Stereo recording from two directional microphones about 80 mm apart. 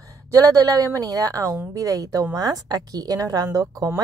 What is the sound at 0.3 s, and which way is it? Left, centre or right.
A woman's voice, right.